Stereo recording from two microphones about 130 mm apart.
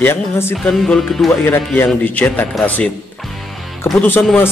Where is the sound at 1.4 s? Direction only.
15° left (ahead or behind).